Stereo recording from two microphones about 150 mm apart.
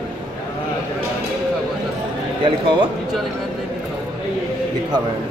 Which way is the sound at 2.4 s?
35° right (ahead or behind).